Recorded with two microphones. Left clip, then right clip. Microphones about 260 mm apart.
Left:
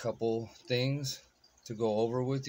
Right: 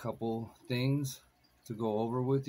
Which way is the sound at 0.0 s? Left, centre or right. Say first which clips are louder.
Left 5 dB; left.